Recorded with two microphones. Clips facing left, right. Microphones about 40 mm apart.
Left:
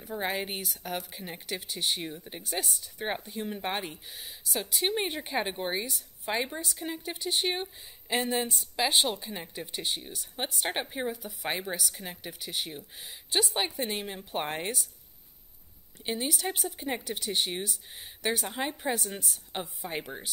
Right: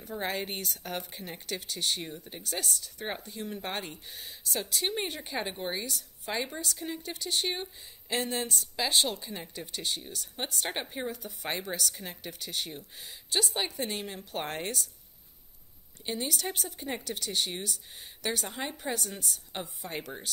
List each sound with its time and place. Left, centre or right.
0.0 s speech: centre
16.2 s speech: centre